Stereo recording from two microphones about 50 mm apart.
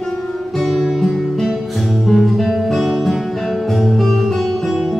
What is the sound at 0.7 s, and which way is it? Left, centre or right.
Guitar, centre.